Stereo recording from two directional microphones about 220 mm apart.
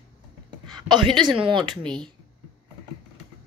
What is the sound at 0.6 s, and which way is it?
Speech, 20° right (ahead or behind).